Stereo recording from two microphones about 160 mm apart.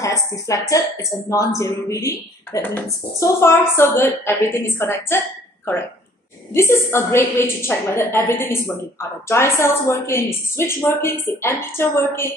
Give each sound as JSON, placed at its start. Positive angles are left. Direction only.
{"t": 0.0, "sound": "speech", "side_deg": 20}
{"t": 6.5, "sound": "speech", "side_deg": 15}